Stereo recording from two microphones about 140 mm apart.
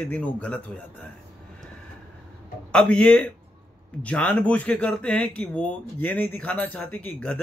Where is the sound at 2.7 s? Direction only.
5° left (ahead or behind).